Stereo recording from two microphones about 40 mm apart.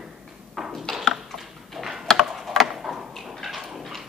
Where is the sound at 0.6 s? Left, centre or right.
Centre.